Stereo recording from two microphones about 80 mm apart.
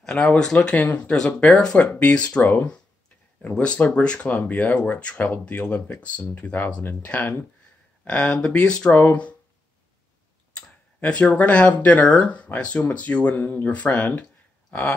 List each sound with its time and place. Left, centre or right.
0.0 s speech: centre
10.5 s speech: centre
14.7 s a sound: centre